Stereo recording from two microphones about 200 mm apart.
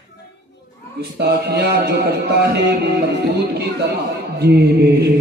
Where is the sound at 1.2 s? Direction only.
55° right (ahead or behind).